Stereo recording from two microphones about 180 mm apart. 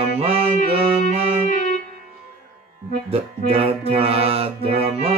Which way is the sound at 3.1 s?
35° right (ahead or behind).